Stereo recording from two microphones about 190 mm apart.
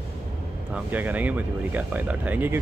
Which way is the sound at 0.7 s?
10° right (ahead or behind).